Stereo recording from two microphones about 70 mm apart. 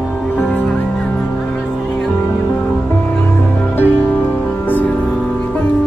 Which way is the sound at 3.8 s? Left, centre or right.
Left.